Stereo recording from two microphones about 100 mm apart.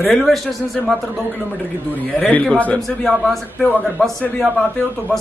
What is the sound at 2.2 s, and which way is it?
Speech, 15° left (ahead or behind).